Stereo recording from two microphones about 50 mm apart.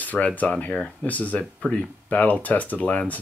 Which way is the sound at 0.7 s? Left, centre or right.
Centre.